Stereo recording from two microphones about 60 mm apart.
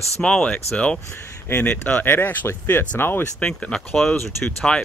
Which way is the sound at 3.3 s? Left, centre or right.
Centre.